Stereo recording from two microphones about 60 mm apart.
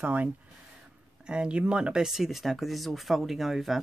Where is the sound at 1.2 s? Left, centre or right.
Centre.